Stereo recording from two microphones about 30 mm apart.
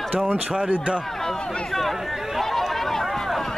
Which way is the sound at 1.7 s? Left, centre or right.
Centre.